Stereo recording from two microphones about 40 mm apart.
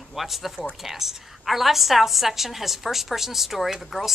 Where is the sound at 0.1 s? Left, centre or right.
Centre.